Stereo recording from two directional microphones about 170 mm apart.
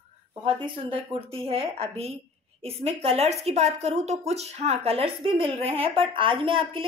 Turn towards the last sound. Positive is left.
turn(degrees=-35)  # may be behind; listen again after turning